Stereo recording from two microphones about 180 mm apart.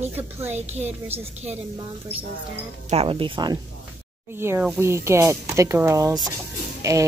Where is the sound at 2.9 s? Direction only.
30° right (ahead or behind).